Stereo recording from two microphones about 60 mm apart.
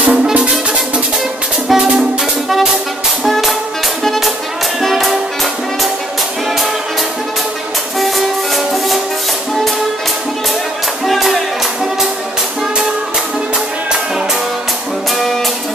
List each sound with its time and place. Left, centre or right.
0.0 s music: right
1.7 s music: centre
3.3 s music: centre
8.5 s music: centre
11.1 s music: centre